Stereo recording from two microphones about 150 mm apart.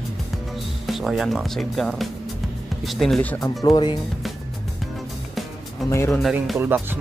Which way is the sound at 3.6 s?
30° left (ahead or behind).